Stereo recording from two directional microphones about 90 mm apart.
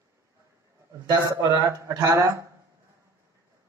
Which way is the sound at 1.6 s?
45° right (ahead or behind).